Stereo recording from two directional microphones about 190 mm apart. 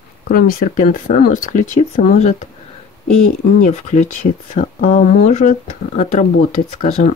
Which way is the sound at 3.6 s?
40° left (ahead or behind).